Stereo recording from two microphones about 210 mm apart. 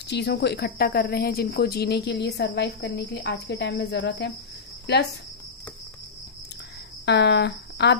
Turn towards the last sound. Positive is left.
turn(degrees=55)  # may be behind; listen again after turning